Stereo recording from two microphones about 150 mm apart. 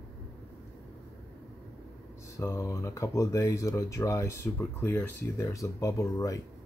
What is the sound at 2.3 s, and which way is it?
Speech, 20° left (ahead or behind).